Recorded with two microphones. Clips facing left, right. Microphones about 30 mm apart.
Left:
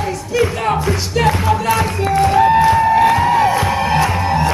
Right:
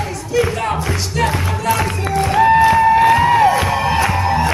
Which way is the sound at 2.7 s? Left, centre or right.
Centre.